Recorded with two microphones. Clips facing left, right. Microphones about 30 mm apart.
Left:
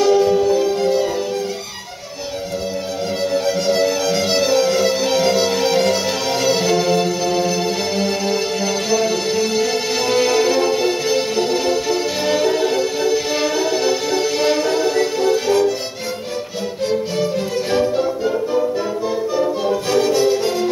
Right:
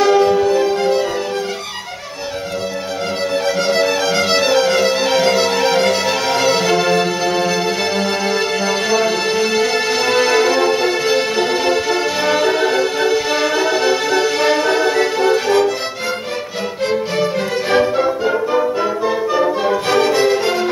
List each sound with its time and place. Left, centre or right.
0.0 s music: right
3.4 s music: right
12.2 s music: centre
12.4 s music: right
17.2 s music: right
18.8 s music: right